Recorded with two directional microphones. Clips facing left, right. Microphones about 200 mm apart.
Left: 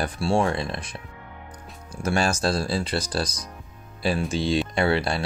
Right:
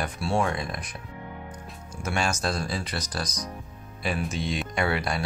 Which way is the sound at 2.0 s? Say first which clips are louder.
Left 5 dB; 35° left (ahead or behind).